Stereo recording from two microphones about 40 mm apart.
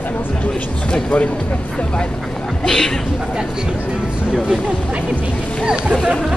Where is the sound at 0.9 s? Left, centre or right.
Left.